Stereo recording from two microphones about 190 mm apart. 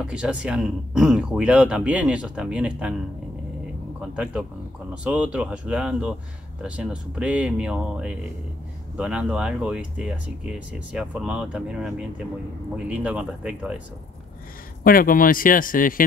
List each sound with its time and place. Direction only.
0.0 s speech: 5° right (ahead or behind)
4.1 s speech: 5° right (ahead or behind)
14.8 s speech: 50° left (ahead or behind)